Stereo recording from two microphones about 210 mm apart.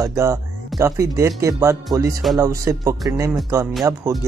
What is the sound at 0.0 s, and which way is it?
Speech, 15° right (ahead or behind).